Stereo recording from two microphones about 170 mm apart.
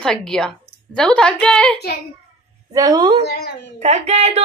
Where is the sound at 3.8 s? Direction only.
40° right (ahead or behind).